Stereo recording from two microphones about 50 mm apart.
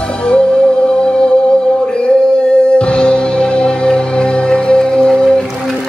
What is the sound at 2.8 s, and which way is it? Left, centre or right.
Music, centre.